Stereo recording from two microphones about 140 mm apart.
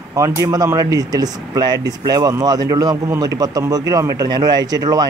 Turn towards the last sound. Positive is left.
turn(degrees=-25)  # may be behind; listen again after turning